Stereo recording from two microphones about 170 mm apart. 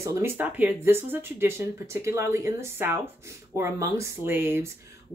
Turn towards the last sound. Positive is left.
turn(degrees=-15)  # may be behind; listen again after turning